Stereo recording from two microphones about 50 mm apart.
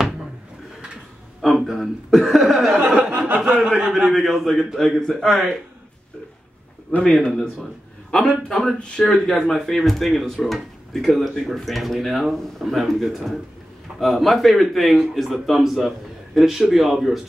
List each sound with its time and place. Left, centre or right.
1.4 s a sound: centre
1.8 s speech: centre
2.2 s a sound: centre
3.0 s a sound: right
3.3 s speech: centre
7.1 s speech: centre
8.5 s speech: centre
8.7 s a man's voice: left
9.0 s speech: centre